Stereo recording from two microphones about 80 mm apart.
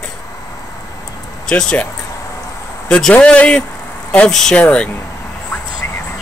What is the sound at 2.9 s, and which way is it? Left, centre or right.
Speech, centre.